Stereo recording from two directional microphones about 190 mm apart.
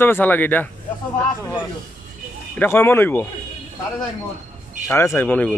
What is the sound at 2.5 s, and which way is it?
Speech, 10° left (ahead or behind).